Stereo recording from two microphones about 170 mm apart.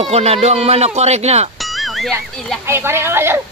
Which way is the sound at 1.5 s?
Centre (ahead or behind).